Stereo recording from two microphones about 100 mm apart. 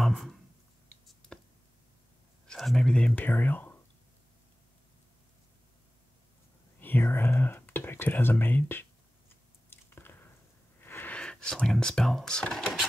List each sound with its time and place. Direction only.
0.0 s a sound: 5° left (ahead or behind)
2.4 s speech: 5° left (ahead or behind)
6.8 s speech: 20° left (ahead or behind)
9.7 s squish: 20° left (ahead or behind)
10.8 s wheeze: 20° left (ahead or behind)
11.1 s speech: 10° left (ahead or behind)